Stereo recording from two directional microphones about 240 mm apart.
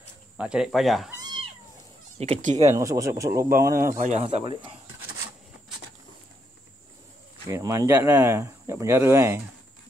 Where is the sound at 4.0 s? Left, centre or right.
Right.